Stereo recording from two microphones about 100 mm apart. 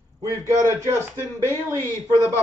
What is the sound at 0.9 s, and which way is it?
Speech, 25° left (ahead or behind).